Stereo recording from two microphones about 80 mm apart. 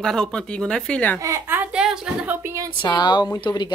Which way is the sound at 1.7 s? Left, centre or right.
Centre.